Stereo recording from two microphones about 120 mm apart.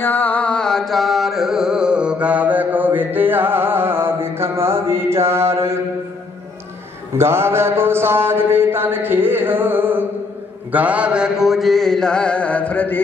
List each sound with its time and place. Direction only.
0.0 s carnatic music: 15° left (ahead or behind); by 5.8 s 20° right (ahead or behind)
7.2 s a sound: 20° right (ahead or behind)
10.7 s mantra: 10° right (ahead or behind); by 13.0 s 15° left (ahead or behind)